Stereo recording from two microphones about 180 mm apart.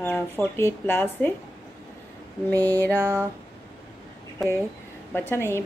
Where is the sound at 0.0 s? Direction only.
10° left (ahead or behind).